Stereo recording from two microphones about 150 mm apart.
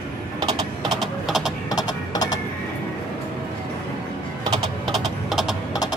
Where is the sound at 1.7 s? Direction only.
25° left (ahead or behind).